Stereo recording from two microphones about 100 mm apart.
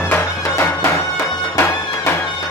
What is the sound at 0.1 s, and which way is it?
Music, 20° left (ahead or behind).